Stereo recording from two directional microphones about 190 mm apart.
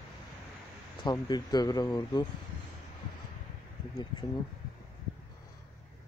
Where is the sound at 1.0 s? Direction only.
20° left (ahead or behind).